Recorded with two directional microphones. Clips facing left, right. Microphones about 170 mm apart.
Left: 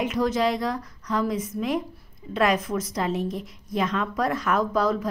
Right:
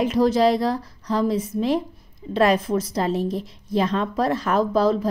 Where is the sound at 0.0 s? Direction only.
35° right (ahead or behind).